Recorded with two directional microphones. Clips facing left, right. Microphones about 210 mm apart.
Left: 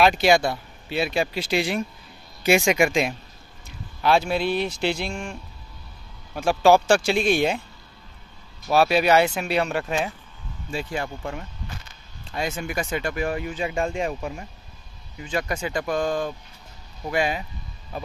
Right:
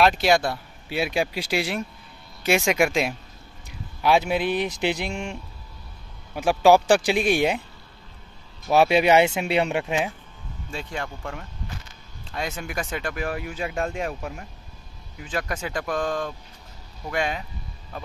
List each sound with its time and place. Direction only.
0.0 s speech: centre (ahead or behind)
3.6 s speech: 15° right (ahead or behind)
6.3 s speech: 15° right (ahead or behind)
8.6 s speech: 20° right (ahead or behind)
10.7 s speech: 5° left (ahead or behind)